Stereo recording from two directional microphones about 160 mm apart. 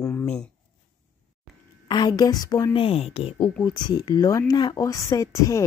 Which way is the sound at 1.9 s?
25° left (ahead or behind).